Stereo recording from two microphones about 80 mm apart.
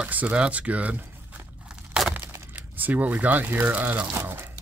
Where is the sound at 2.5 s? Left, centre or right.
Right.